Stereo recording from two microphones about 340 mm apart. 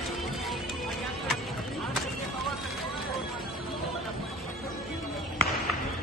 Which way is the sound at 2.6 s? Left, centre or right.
Centre.